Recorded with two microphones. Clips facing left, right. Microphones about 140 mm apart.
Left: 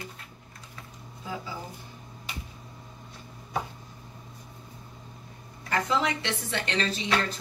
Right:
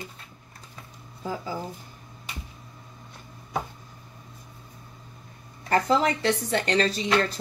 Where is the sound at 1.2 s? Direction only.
45° right (ahead or behind).